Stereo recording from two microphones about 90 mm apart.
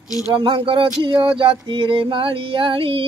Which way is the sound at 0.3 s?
65° right (ahead or behind).